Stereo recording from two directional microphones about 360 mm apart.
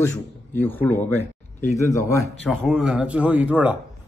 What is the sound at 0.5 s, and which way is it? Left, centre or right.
A man's voice, centre.